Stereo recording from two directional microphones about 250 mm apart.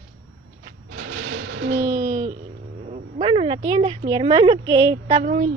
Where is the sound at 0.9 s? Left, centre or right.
Right.